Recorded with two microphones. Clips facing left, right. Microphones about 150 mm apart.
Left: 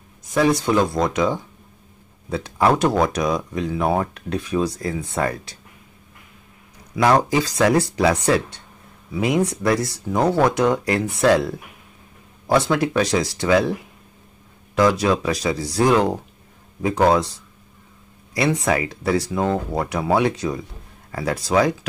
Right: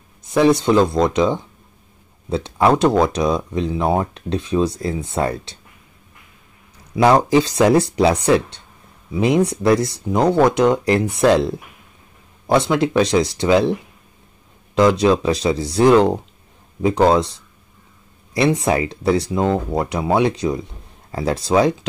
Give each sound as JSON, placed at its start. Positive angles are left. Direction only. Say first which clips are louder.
{"t": 0.6, "sound": "speech", "louder": "right 4 dB", "side_deg": -25}
{"t": 7.2, "sound": "speech", "louder": "right 4 dB", "side_deg": -30}
{"t": 14.8, "sound": "speech", "louder": "right 3 dB", "side_deg": -20}